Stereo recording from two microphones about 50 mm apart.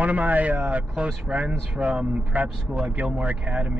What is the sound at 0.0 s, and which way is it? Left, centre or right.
Speech, right.